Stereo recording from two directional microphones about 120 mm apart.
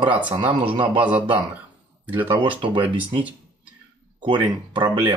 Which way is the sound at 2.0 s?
15° right (ahead or behind).